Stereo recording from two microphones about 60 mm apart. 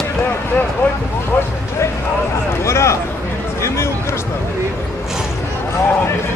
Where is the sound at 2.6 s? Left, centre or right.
Left.